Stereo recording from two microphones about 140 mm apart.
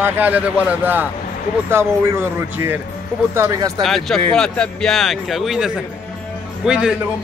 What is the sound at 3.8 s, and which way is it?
Speech, centre (ahead or behind).